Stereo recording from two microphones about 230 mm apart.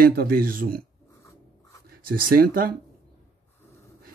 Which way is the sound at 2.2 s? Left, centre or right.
Right.